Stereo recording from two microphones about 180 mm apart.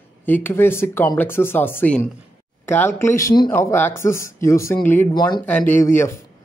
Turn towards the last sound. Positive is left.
turn(degrees=15)  # may be behind; listen again after turning